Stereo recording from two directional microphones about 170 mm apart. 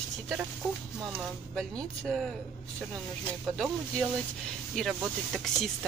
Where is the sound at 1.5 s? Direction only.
5° left (ahead or behind).